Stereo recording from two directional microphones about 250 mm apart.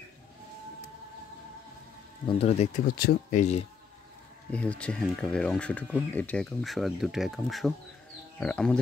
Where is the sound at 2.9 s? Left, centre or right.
Left.